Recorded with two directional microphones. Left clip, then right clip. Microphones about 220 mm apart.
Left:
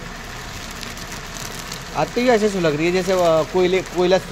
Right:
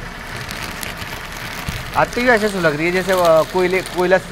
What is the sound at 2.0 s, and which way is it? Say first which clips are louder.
Speech: right 3 dB; 20° left (ahead or behind).